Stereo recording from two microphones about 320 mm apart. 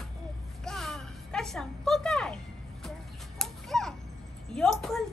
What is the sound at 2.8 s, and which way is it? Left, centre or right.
Whip, centre.